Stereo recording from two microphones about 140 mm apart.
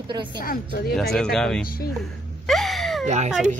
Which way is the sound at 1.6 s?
90° left.